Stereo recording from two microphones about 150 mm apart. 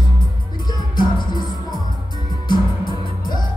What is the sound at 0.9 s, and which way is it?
Music, 30° left (ahead or behind).